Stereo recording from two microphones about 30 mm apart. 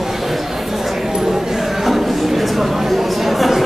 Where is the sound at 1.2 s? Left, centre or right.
Centre.